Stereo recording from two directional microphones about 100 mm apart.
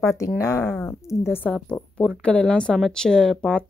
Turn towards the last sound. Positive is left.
turn(degrees=5)  # may be behind; listen again after turning